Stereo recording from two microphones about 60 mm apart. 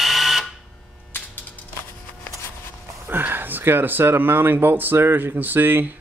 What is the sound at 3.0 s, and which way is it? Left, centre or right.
Speech, right.